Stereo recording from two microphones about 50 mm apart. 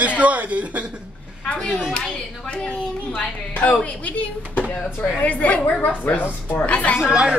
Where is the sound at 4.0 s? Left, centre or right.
Left.